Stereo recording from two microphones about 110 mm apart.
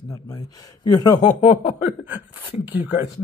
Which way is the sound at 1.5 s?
75° left (ahead or behind).